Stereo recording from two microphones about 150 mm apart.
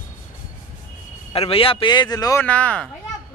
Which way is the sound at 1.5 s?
35° left (ahead or behind).